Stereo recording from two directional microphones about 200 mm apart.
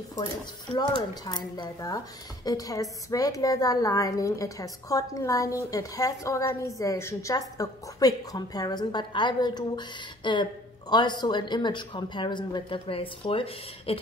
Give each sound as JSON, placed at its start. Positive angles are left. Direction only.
{"t": 0.7, "sound": "a woman's voice", "side_deg": 20}